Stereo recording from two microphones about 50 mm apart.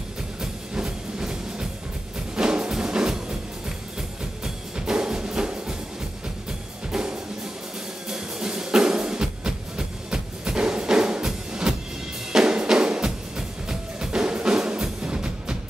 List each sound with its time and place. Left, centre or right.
0.4 s music: centre
4.7 s music: centre
6.9 s music: centre